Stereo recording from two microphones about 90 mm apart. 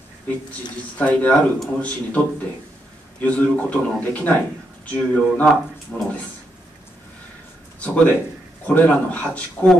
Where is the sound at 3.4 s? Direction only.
15° left (ahead or behind).